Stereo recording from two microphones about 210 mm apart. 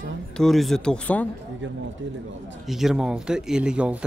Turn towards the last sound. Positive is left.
turn(degrees=-5)  # may be behind; listen again after turning